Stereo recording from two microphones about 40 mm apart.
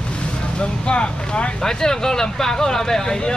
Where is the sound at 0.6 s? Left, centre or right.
Left.